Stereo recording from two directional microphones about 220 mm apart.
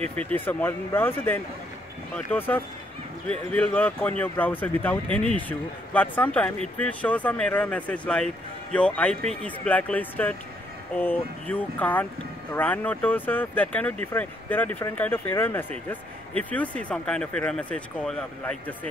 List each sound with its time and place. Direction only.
0.0 s speech: 5° left (ahead or behind)